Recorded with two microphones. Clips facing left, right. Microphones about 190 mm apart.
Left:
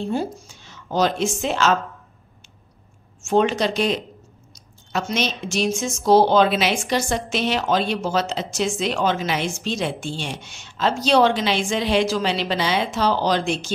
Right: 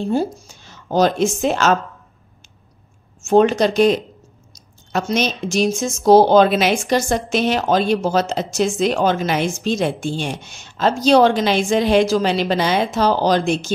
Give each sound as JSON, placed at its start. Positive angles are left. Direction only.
{"t": 0.1, "sound": "speech", "side_deg": -40}
{"t": 3.2, "sound": "speech", "side_deg": -40}